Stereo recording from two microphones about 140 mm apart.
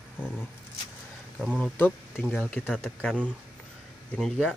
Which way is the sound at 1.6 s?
10° left (ahead or behind).